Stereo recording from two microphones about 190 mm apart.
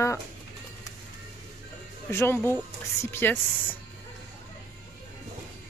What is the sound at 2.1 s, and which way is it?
Speech, 10° left (ahead or behind).